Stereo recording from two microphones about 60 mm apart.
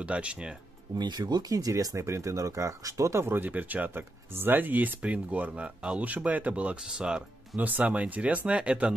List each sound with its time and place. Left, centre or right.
0.0 s speech: centre
1.2 s speech: right
3.3 s speech: right; by 7.2 s centre
7.5 s speech: right